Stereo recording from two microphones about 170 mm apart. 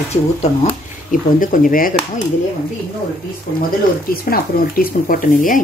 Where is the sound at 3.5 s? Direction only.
65° left (ahead or behind).